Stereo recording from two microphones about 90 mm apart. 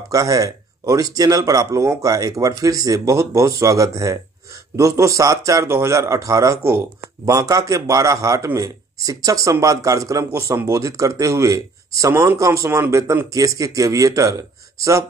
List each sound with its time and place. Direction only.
0.1 s speech: 40° right (ahead or behind)